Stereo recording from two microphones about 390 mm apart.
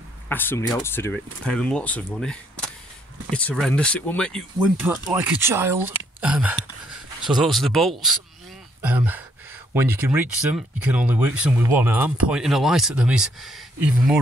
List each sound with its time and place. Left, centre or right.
0.3 s speech: centre